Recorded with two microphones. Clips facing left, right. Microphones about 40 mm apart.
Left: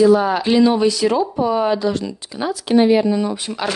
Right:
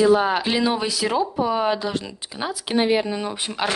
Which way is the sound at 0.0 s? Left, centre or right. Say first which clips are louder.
Left 4 dB; right.